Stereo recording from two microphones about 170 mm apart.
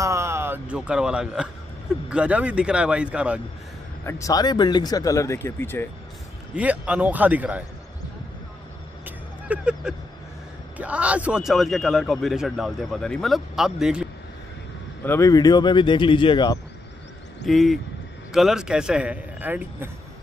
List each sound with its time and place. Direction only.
0.0 s speech: 15° right (ahead or behind)
4.0 s speech: 15° left (ahead or behind)
6.5 s speech: 10° right (ahead or behind)
9.0 s a sound: 5° right (ahead or behind)
10.8 s a man's voice: 5° right (ahead or behind)
15.0 s speech: 15° left (ahead or behind)
17.5 s a man's voice: centre (ahead or behind)